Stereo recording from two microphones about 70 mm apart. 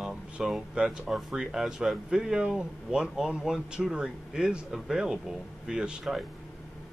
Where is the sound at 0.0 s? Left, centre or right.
Centre.